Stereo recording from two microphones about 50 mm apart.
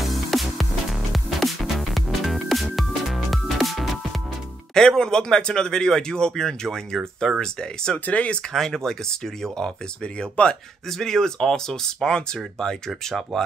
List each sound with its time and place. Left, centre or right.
0.0 s music: centre
4.7 s speech: centre
8.1 s speech: left
8.5 s speech: centre
10.4 s speech: left
10.9 s speech: centre